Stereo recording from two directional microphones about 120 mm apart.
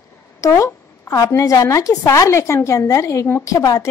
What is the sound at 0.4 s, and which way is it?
A woman's voice, 25° left (ahead or behind).